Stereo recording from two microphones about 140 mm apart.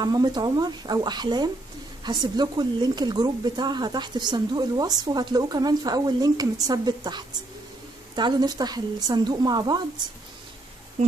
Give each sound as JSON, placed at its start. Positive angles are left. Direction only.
{"t": 0.0, "sound": "speech", "side_deg": -30}